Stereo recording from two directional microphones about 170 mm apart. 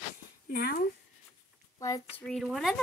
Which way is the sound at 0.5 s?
65° left (ahead or behind).